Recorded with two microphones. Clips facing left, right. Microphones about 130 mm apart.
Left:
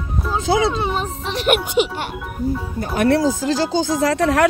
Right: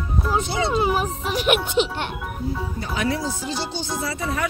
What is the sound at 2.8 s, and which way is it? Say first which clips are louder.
Speech: left 9 dB; 55° left (ahead or behind).